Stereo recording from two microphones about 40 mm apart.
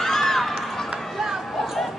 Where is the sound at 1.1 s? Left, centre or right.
Centre.